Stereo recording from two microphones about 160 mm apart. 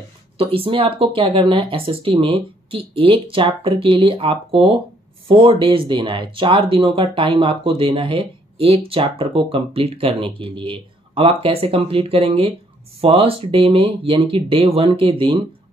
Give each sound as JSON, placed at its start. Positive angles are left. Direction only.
{"t": 0.4, "sound": "speech", "side_deg": -35}